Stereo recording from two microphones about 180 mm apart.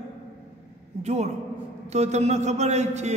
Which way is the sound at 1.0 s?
40° right (ahead or behind).